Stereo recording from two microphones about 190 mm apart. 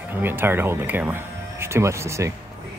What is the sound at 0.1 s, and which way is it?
Speech, 10° right (ahead or behind).